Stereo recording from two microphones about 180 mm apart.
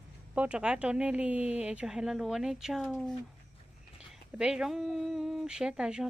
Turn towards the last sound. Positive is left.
turn(degrees=-5)  # may be behind; listen again after turning